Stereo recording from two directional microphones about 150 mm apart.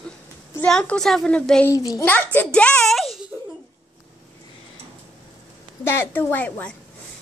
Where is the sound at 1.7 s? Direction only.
25° left (ahead or behind).